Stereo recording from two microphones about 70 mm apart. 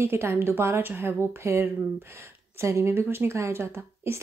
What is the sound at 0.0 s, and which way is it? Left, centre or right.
A woman's voice, right.